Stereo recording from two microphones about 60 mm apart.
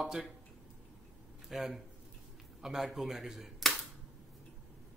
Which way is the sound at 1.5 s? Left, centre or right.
Centre.